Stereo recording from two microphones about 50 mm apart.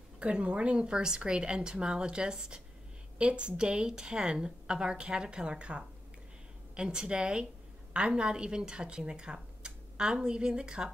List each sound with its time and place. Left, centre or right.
0.2 s a woman's voice: right